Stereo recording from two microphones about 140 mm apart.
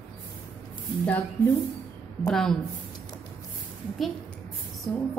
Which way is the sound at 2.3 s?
5° left (ahead or behind).